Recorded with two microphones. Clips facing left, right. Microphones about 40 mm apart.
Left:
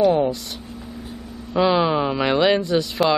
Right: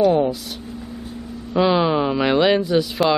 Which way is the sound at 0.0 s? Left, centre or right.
Centre.